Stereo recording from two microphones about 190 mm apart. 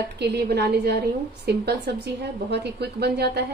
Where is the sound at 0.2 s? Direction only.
60° right (ahead or behind).